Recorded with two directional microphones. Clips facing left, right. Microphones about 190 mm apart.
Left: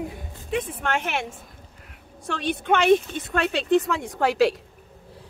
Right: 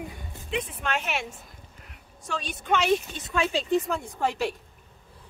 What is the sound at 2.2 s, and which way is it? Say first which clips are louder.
Speech: left 6 dB; 60° left (ahead or behind).